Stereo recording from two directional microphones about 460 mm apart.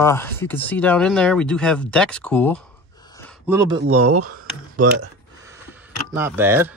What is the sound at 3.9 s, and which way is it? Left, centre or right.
Speech, right.